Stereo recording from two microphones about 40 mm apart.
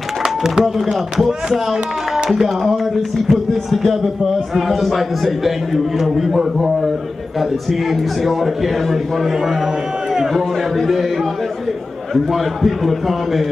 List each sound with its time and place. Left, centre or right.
0.2 s a sound: centre
1.2 s a man's voice: centre
7.9 s a man's voice: centre
10.3 s a man's voice: centre
12.3 s a man's voice: centre